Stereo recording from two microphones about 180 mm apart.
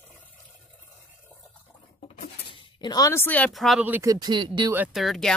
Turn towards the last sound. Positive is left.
turn(degrees=0)  # may be behind; listen again after turning